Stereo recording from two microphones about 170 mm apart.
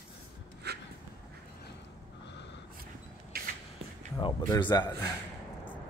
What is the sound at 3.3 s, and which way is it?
Beatboxing, 65° right (ahead or behind).